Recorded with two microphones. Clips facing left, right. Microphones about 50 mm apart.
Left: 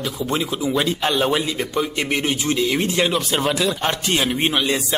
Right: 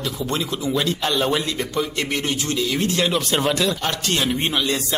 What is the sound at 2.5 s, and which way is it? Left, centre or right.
Speech, left.